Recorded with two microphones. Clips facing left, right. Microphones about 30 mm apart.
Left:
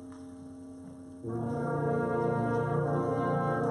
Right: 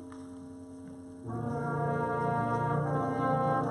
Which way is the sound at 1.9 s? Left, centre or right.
Centre.